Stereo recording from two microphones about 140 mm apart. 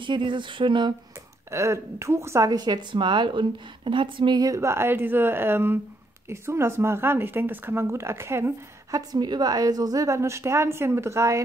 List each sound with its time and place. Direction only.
0.0 s speech: 35° right (ahead or behind)
1.5 s a woman's voice: 20° right (ahead or behind)
9.1 s a woman's voice: 30° right (ahead or behind)